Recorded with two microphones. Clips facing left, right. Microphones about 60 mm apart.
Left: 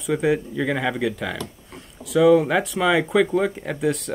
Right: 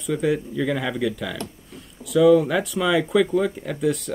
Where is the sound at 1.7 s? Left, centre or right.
Centre.